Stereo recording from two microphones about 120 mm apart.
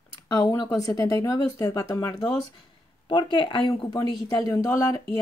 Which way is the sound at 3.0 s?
40° left (ahead or behind).